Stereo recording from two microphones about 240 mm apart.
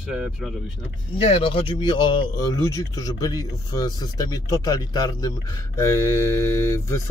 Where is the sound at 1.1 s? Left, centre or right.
Left.